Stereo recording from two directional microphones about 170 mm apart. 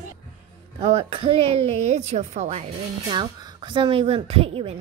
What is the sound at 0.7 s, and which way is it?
Speech, 40° right (ahead or behind).